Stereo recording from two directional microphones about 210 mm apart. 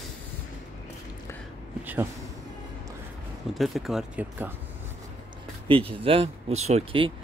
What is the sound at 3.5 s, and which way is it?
Speech, centre (ahead or behind).